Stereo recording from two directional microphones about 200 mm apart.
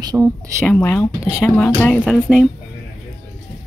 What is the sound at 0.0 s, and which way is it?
Speech, 20° right (ahead or behind).